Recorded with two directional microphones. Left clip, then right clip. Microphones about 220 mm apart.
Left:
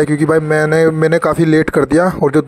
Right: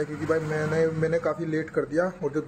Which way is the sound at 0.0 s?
45° left (ahead or behind).